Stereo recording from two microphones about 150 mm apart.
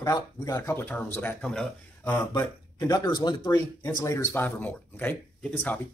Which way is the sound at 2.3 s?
25° left (ahead or behind).